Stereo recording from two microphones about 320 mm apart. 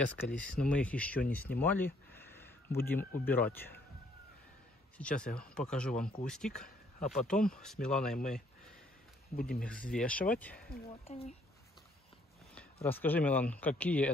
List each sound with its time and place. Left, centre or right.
0.0 s speech: centre
2.1 s a sound: centre
2.8 s speech: centre
4.9 s speech: centre
9.4 s speech: left
9.9 s speech: centre
10.9 s speech: centre
12.8 s speech: centre